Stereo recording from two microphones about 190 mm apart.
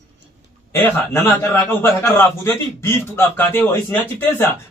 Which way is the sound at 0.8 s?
15° left (ahead or behind).